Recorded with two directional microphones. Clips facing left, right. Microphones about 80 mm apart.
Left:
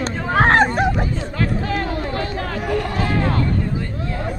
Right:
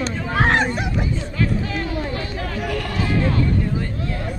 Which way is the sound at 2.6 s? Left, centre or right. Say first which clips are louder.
Left 6 dB; left.